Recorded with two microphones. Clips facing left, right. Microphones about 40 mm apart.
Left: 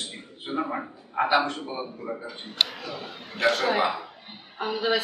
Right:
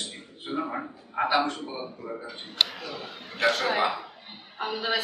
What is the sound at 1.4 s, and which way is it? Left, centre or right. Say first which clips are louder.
Speech: even; centre.